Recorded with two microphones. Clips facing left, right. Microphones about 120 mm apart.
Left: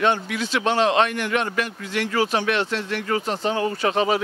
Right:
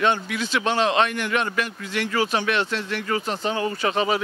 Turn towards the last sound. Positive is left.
turn(degrees=45)  # may be behind; listen again after turning